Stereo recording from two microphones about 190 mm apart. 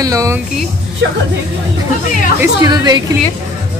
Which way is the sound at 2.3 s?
15° right (ahead or behind).